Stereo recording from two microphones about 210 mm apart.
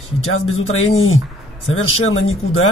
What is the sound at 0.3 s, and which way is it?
Speech, 75° left (ahead or behind).